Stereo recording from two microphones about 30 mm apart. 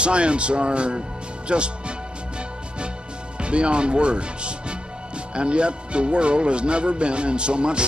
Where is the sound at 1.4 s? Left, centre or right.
Right.